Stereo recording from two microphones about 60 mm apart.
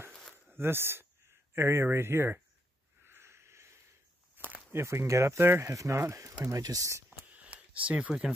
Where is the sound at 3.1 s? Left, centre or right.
Right.